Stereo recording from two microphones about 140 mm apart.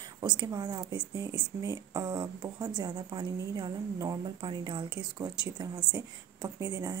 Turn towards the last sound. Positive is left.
turn(degrees=-25)  # may be behind; listen again after turning